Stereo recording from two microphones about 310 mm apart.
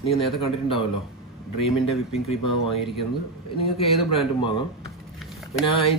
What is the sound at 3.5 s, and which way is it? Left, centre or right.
A man's voice, centre.